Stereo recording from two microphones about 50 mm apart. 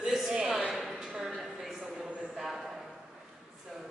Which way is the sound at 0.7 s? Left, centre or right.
Centre.